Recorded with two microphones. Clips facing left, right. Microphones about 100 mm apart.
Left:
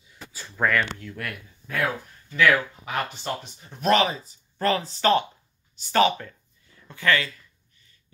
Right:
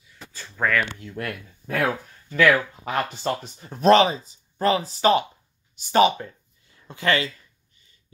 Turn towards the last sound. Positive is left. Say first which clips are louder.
# right 1 dB
turn(degrees=-25)  # may be behind; listen again after turning